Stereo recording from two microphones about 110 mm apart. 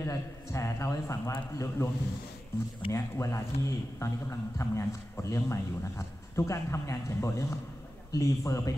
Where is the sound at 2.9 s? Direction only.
25° left (ahead or behind).